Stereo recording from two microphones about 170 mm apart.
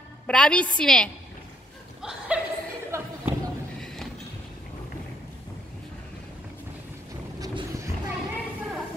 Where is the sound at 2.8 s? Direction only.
15° right (ahead or behind).